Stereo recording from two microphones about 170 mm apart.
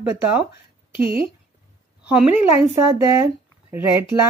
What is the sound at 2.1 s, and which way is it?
Speech, 10° right (ahead or behind).